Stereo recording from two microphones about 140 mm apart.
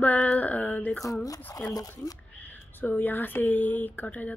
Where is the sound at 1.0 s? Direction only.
25° left (ahead or behind).